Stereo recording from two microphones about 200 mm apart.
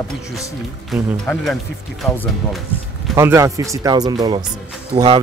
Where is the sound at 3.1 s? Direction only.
15° right (ahead or behind).